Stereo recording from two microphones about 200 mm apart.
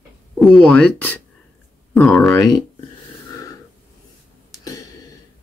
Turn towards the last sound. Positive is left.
turn(degrees=15)  # may be behind; listen again after turning